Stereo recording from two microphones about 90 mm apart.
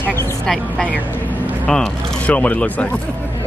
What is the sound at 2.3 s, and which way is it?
Speech, 15° left (ahead or behind).